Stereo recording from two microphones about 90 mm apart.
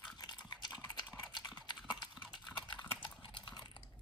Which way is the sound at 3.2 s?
60° left (ahead or behind).